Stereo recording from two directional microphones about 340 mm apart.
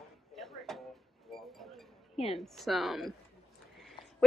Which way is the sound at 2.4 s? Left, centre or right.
Centre.